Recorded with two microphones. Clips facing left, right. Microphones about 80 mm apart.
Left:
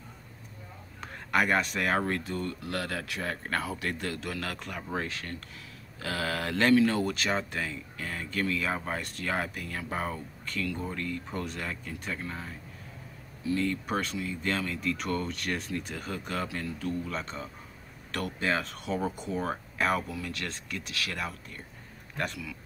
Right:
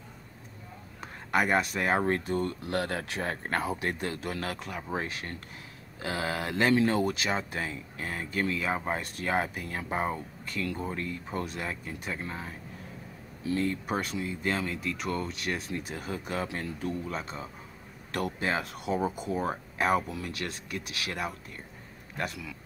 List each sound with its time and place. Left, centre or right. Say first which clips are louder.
1.0 s a sound: even; centre
1.8 s speech: right 2 dB; right
4.6 s speech: right 1 dB; centre
7.2 s speech: left 1 dB; centre
7.5 s speech: even; right
13.7 s speech: even; centre
14.8 s speech: left 1 dB; centre
16.4 s speech: even; right
17.1 s speech: even; centre
18.1 s speech: even; right
20.0 s speech: right 1 dB; right
22.1 s speech: left 1 dB; centre